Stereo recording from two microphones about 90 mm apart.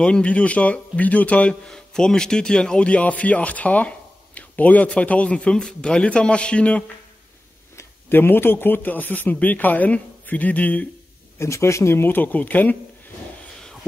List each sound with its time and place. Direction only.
0.0 s speech: 10° left (ahead or behind)
7.7 s speech: 25° left (ahead or behind)
11.3 s speech: 30° left (ahead or behind)